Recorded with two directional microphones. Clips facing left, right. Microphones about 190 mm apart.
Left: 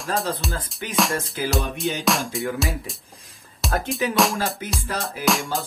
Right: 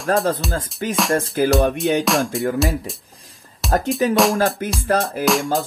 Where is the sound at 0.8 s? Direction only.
45° right (ahead or behind).